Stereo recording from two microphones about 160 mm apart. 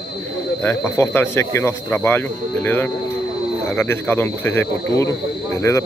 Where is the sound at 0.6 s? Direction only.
15° left (ahead or behind).